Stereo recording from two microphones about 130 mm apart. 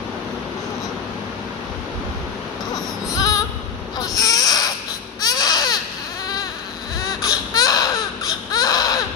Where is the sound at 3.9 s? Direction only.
25° left (ahead or behind).